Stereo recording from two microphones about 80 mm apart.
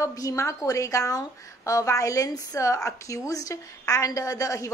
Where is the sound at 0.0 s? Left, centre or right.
Left.